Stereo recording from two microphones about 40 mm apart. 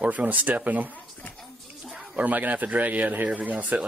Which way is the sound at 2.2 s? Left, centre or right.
Right.